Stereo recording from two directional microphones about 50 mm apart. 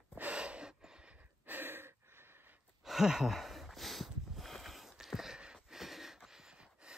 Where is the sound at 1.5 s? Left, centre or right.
Right.